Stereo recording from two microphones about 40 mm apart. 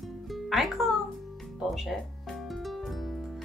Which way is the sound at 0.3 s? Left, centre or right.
Centre.